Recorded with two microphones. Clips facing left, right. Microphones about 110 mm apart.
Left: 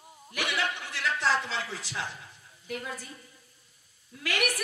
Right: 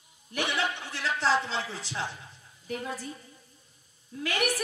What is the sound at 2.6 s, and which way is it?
Speech, 35° right (ahead or behind).